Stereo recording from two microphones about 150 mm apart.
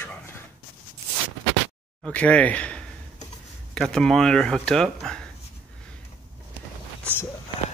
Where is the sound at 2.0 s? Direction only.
10° left (ahead or behind).